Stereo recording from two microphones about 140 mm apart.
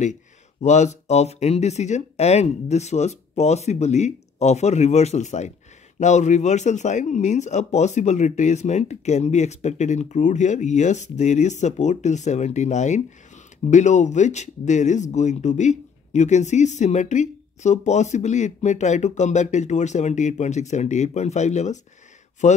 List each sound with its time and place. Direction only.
0.0 s speech: 60° left (ahead or behind)